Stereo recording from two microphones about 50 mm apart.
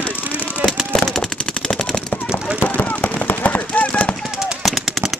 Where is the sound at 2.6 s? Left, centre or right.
Left.